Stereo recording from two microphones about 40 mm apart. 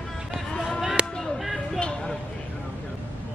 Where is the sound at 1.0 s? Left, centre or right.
Right.